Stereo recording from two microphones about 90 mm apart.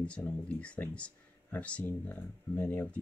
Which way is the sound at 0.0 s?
15° left (ahead or behind).